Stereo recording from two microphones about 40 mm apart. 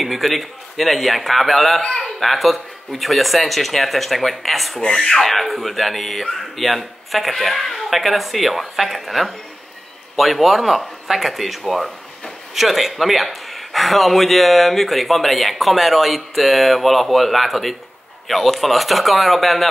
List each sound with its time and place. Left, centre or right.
0.0 s speech: centre
1.8 s a sound: centre
2.1 s speech: centre